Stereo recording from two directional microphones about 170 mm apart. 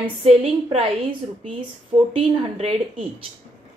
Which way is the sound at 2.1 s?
35° right (ahead or behind).